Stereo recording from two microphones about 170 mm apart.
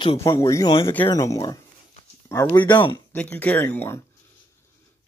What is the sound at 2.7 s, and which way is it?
Speech, 30° left (ahead or behind).